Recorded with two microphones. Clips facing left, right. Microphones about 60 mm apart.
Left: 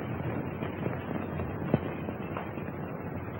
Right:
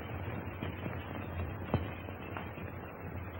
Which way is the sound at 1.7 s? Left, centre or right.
Centre.